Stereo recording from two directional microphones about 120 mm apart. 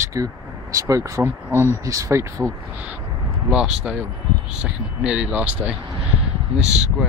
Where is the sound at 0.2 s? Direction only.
30° right (ahead or behind).